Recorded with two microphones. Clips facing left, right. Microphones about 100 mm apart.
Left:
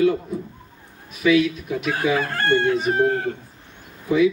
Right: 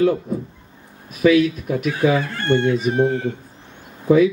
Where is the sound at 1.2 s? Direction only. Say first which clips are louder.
Right 3 dB; 45° right (ahead or behind).